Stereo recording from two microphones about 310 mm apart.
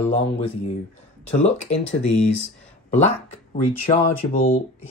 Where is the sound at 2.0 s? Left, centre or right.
Left.